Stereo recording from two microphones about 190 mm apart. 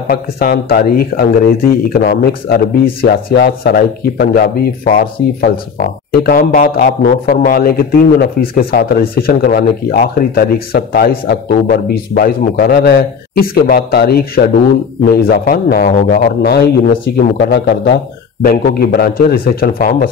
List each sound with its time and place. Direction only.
0.1 s a man's voice: 50° left (ahead or behind)